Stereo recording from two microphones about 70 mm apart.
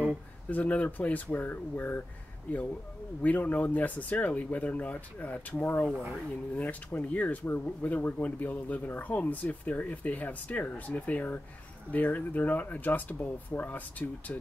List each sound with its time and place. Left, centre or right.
0.5 s speech: left